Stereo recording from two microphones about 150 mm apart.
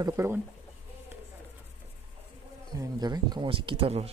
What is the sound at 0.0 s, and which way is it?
Speech, 20° right (ahead or behind).